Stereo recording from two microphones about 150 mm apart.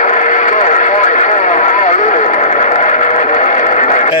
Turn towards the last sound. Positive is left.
turn(degrees=55)  # may be behind; listen again after turning